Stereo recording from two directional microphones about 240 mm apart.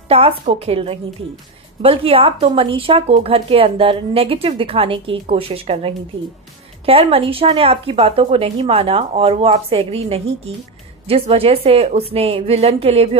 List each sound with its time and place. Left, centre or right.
0.1 s speech: right